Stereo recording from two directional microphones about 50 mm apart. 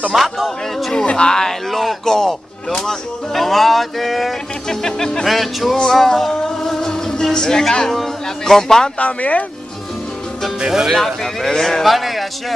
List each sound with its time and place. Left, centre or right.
0.1 s speech: centre
0.9 s speech: centre
5.2 s speech: centre
8.9 s speech: left
10.9 s speech: centre